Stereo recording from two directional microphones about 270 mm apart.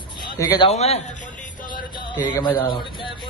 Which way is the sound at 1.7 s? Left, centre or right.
Centre.